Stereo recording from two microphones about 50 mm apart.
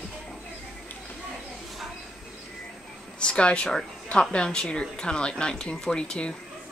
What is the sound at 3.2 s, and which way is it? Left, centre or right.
A woman's voice, left.